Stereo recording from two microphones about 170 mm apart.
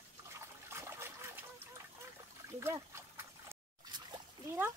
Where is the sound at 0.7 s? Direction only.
15° right (ahead or behind).